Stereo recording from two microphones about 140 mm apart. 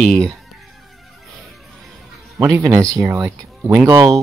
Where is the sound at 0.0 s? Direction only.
5° left (ahead or behind).